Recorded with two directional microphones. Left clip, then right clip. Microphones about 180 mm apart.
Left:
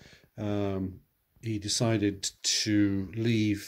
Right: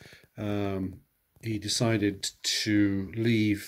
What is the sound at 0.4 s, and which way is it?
Speech, 20° left (ahead or behind).